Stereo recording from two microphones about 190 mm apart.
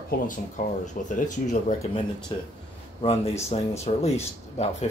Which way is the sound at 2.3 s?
20° left (ahead or behind).